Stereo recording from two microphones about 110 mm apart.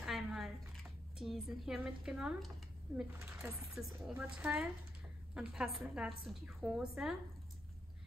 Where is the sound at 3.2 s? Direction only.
25° right (ahead or behind).